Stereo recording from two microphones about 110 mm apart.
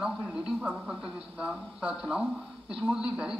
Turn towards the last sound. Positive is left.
turn(degrees=-10)  # may be behind; listen again after turning